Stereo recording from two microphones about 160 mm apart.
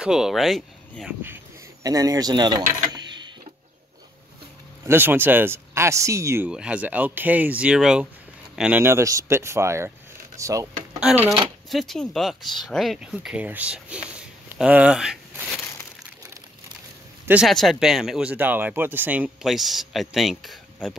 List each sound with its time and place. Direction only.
0.0 s speech: 5° right (ahead or behind)
1.2 s speech: 20° right (ahead or behind)
2.9 s a sound: 25° right (ahead or behind)
4.8 s speech: 15° right (ahead or behind)
6.5 s speech: 5° right (ahead or behind)
11.0 s speech: 5° right (ahead or behind)
17.3 s speech: centre (ahead or behind)